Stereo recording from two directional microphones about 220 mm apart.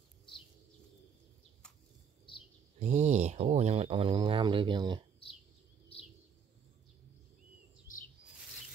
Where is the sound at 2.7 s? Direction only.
30° right (ahead or behind).